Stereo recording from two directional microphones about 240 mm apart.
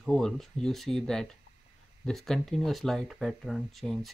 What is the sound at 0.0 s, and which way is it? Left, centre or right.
Speech, centre.